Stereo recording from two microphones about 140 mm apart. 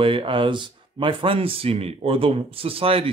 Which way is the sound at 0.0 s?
40° right (ahead or behind).